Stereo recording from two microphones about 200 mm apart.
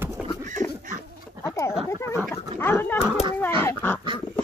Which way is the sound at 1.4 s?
15° left (ahead or behind).